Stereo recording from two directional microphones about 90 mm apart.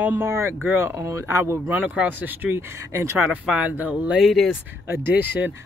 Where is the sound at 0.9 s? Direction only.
35° right (ahead or behind).